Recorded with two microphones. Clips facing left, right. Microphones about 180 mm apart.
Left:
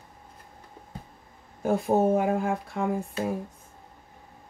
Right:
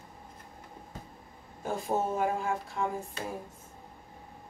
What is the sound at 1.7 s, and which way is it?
Speech, 60° left (ahead or behind).